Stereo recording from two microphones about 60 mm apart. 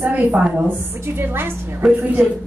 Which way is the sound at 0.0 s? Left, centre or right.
Right.